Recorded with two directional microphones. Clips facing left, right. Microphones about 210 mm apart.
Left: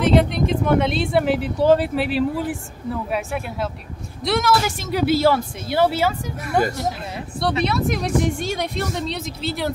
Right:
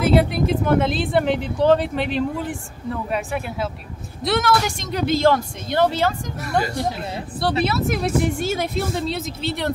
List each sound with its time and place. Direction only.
0.0 s speech: 5° right (ahead or behind)
7.6 s speech: 5° right (ahead or behind)